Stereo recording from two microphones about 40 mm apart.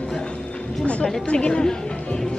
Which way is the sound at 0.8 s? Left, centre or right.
Left.